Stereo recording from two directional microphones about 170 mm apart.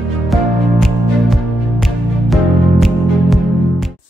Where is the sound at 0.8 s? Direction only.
Centre (ahead or behind).